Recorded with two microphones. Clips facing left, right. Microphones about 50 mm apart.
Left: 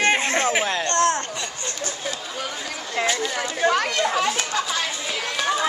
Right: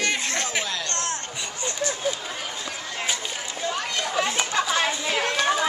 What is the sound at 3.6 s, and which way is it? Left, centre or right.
Chatter, left.